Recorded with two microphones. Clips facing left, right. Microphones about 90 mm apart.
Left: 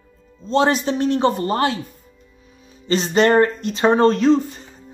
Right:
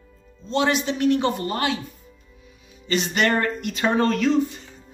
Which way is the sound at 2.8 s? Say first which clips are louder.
Left 6 dB; 35° left (ahead or behind).